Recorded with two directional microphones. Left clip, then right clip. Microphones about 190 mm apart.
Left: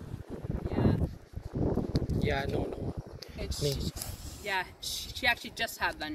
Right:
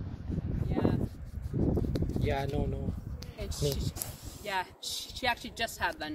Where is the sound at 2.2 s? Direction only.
Centre (ahead or behind).